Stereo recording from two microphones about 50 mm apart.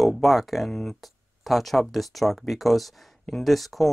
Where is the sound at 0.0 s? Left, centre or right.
Centre.